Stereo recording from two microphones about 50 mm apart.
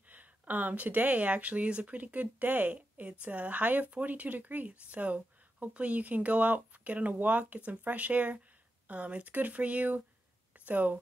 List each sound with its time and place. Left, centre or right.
0.1 s speech: right